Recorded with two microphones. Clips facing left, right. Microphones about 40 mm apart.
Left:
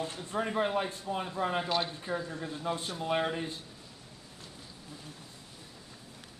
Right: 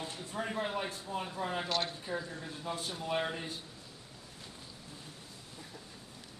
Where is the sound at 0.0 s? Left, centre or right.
Left.